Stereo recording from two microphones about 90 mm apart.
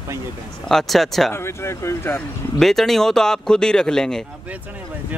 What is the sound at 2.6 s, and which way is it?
Speech, 5° left (ahead or behind).